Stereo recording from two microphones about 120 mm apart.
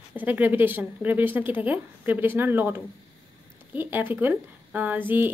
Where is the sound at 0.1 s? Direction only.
15° right (ahead or behind).